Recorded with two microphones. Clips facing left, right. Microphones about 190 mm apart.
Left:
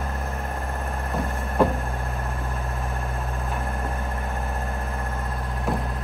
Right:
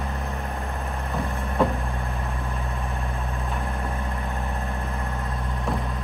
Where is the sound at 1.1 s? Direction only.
Centre (ahead or behind).